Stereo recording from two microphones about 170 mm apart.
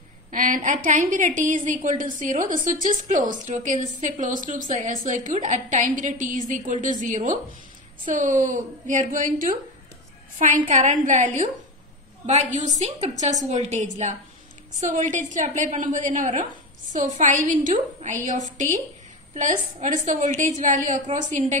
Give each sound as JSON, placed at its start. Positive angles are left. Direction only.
{"t": 0.3, "sound": "a woman's voice", "side_deg": -50}
{"t": 10.7, "sound": "a woman's voice", "side_deg": -45}